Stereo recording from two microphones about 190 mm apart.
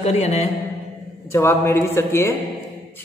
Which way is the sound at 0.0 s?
35° left (ahead or behind).